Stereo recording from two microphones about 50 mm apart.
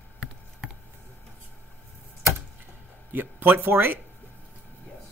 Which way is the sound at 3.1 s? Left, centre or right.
Right.